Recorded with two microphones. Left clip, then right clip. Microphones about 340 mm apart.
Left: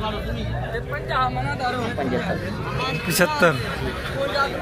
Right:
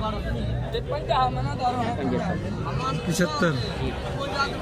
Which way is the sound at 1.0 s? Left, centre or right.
Right.